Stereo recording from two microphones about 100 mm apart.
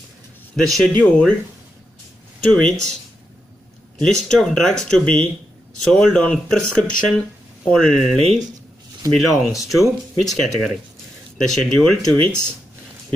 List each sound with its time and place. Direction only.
0.6 s speech: 5° left (ahead or behind)
2.4 s speech: 5° left (ahead or behind)
4.1 s speech: 5° left (ahead or behind)